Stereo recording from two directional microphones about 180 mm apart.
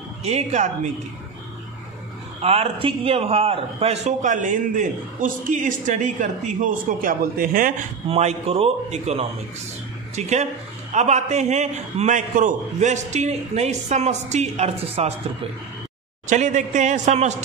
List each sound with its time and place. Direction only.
0.2 s a man's voice: 40° right (ahead or behind)
2.4 s a man's voice: 35° right (ahead or behind); by 7.9 s 50° right (ahead or behind)
8.1 s a man's voice: 35° right (ahead or behind)
16.3 s a man's voice: 45° right (ahead or behind)